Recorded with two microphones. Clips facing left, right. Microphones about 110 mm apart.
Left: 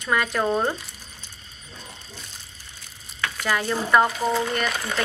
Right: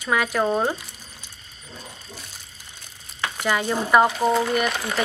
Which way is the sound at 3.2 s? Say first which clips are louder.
Right 2 dB; 20° right (ahead or behind).